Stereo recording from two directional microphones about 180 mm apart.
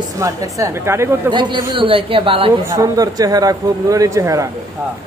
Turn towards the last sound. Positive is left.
turn(degrees=-15)  # may be behind; listen again after turning